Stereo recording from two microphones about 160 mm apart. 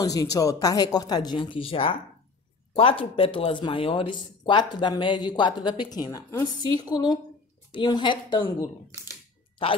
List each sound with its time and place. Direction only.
0.0 s speech: 20° left (ahead or behind)